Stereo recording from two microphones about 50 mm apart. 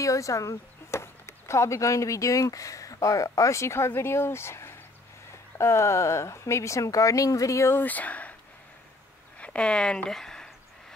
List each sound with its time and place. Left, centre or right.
0.0 s speech: left
1.0 s speech: left
7.7 s speech: left
9.4 s speech: left
10.0 s a sound: centre